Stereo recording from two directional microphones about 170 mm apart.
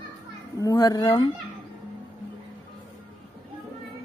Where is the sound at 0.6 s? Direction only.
20° left (ahead or behind).